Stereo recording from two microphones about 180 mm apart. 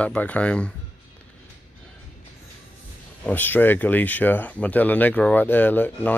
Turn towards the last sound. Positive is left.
turn(degrees=10)  # may be behind; listen again after turning